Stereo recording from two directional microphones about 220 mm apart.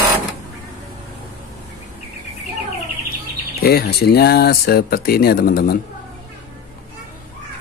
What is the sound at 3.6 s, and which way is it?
Speech, 45° left (ahead or behind).